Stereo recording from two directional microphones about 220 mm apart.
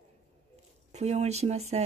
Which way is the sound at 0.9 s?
30° right (ahead or behind).